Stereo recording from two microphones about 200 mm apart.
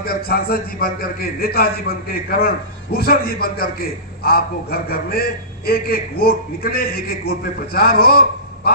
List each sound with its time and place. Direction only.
0.0 s a man's voice: 50° left (ahead or behind)